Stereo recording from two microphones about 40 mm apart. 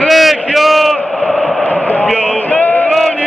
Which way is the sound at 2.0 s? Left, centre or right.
Left.